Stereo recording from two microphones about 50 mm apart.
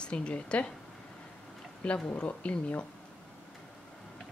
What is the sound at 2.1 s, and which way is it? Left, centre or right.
Speech, left.